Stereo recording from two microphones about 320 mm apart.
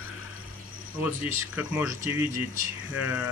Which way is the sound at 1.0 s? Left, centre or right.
Centre.